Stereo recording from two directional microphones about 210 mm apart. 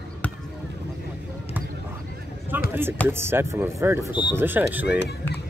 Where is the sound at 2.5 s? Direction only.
10° right (ahead or behind).